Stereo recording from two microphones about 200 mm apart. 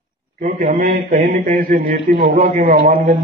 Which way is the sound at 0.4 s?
45° right (ahead or behind).